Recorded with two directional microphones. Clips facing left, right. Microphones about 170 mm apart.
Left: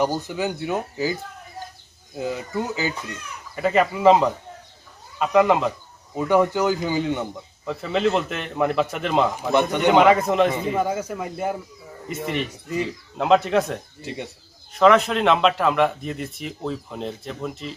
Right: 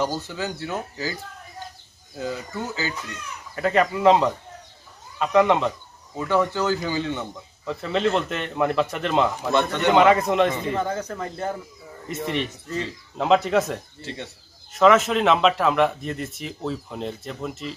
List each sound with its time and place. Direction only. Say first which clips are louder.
0.0 s speech: left 3 dB; 15° left (ahead or behind)
2.1 s speech: left 3 dB; 20° left (ahead or behind)
3.5 s speech: left 1 dB; 5° left (ahead or behind)
6.1 s speech: left 3 dB; 15° left (ahead or behind)
7.6 s speech: left 1 dB; centre (ahead or behind)
9.5 s speech: left 4 dB; 15° left (ahead or behind)
13.2 s speech: left 1 dB; centre (ahead or behind)
14.0 s speech: left 5 dB; 15° left (ahead or behind)
14.7 s speech: left 1 dB; centre (ahead or behind)